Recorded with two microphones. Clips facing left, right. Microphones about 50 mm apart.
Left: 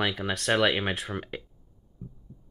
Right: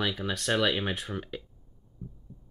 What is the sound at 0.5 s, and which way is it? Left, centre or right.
Speech, centre.